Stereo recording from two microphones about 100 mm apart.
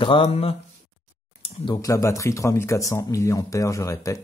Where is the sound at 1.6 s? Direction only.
35° left (ahead or behind).